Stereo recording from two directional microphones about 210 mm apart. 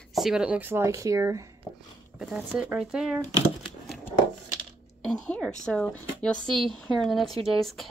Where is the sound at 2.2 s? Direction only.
5° right (ahead or behind).